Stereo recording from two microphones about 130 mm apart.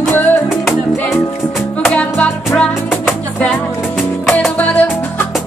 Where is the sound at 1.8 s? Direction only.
10° left (ahead or behind).